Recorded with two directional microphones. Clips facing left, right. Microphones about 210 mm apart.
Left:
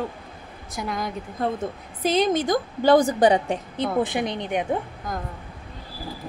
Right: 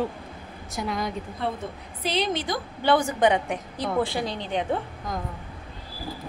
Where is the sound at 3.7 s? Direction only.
20° left (ahead or behind).